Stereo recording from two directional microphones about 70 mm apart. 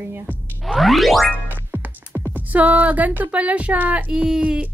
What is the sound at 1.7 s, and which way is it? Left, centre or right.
Music, right.